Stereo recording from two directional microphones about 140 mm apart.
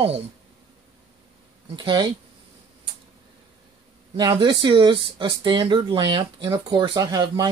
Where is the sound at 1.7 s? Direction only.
35° right (ahead or behind).